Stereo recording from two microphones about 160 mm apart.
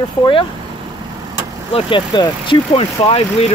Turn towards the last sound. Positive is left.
turn(degrees=35)  # may be behind; listen again after turning